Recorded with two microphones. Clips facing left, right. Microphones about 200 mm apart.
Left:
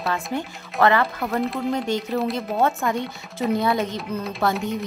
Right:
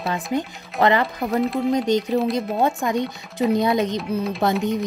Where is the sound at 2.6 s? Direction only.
15° right (ahead or behind).